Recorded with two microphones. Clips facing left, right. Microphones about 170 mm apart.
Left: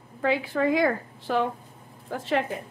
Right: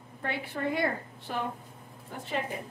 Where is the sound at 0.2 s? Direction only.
90° left.